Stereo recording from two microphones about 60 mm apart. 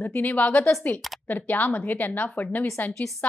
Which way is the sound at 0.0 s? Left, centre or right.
Left.